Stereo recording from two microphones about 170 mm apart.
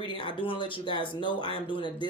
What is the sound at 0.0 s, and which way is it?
Speech, 30° left (ahead or behind).